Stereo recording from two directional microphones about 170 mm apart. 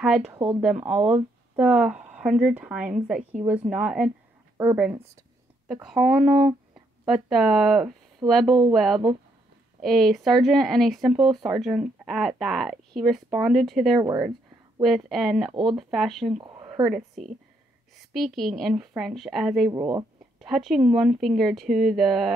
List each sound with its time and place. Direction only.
0.0 s a woman's voice: 5° right (ahead or behind)
13.9 s speech: 25° right (ahead or behind)
14.8 s speech: centre (ahead or behind)
16.3 s a sound: 25° right (ahead or behind)
16.8 s speech: centre (ahead or behind)
19.7 s speech: 20° right (ahead or behind)
20.3 s a woman's voice: centre (ahead or behind)